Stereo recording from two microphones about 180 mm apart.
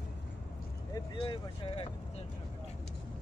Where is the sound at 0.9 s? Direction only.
25° left (ahead or behind).